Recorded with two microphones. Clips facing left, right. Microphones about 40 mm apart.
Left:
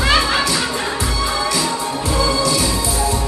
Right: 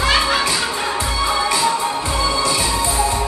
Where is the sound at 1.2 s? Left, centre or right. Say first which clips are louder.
Right 3 dB; centre.